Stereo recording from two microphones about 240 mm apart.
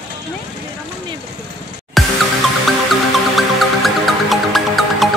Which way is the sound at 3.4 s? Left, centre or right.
Centre.